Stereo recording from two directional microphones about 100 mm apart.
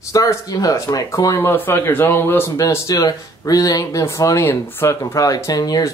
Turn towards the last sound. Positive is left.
turn(degrees=40)  # may be behind; listen again after turning